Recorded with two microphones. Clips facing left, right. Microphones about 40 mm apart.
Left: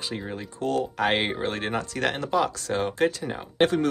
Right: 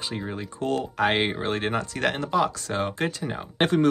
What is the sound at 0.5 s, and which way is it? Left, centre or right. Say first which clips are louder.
Speech: left 1 dB; centre.